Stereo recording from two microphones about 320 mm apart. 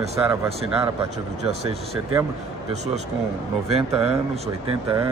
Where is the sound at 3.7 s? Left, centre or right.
Centre.